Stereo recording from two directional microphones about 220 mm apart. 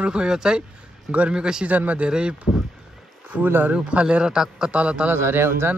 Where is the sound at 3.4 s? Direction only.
10° right (ahead or behind).